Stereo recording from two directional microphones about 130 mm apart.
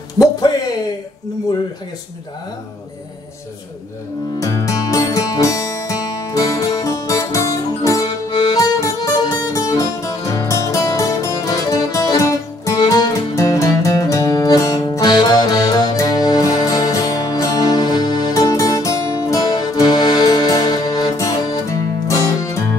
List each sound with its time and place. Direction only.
4.4 s music: 25° left (ahead or behind)